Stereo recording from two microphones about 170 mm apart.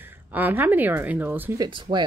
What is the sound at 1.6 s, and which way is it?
Speech, 25° right (ahead or behind).